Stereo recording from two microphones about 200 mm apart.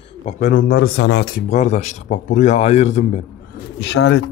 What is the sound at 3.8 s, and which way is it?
Speech, 90° left.